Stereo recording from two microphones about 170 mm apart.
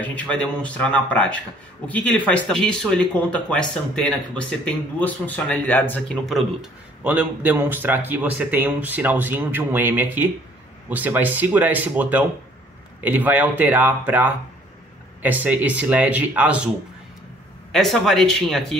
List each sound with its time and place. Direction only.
0.0 s a man's voice: 10° left (ahead or behind)
17.7 s speech: centre (ahead or behind)